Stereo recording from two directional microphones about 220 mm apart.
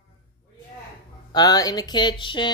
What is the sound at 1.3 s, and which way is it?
Speech, 20° left (ahead or behind).